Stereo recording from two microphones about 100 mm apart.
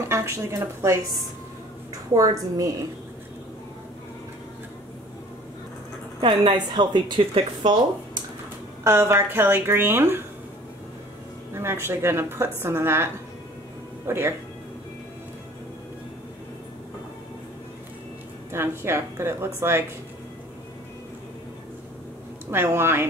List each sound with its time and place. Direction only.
0.1 s a woman's voice: 30° right (ahead or behind)
6.2 s speech: 50° right (ahead or behind)
8.8 s a woman's voice: 30° right (ahead or behind)
11.5 s a woman's voice: 25° right (ahead or behind)
18.5 s a woman's voice: 25° right (ahead or behind)
22.5 s a woman's voice: 25° right (ahead or behind)